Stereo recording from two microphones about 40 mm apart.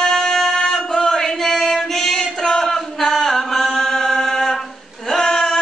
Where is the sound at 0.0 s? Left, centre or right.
Centre.